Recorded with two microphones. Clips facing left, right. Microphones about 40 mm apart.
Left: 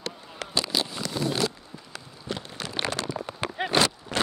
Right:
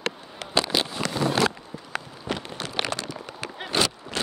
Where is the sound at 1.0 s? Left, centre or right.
Right.